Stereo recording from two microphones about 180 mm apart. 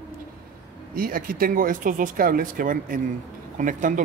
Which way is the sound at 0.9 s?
50° right (ahead or behind).